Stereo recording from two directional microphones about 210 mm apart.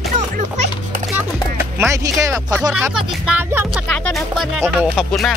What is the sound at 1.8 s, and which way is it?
Speech, 15° right (ahead or behind).